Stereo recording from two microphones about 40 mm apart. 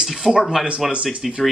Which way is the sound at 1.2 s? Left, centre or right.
Centre.